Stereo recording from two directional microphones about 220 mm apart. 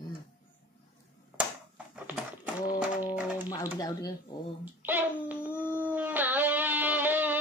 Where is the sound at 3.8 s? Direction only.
20° left (ahead or behind).